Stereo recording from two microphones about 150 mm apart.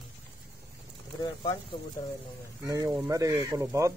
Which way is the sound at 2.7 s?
25° right (ahead or behind).